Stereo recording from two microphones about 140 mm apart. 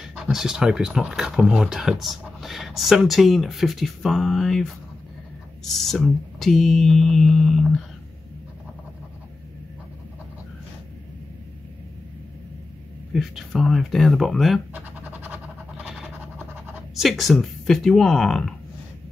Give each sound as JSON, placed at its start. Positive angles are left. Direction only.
{"t": 0.1, "sound": "speech", "side_deg": -5}
{"t": 13.1, "sound": "speech", "side_deg": 0}
{"t": 14.7, "sound": "scratch", "side_deg": -10}
{"t": 17.0, "sound": "speech", "side_deg": 0}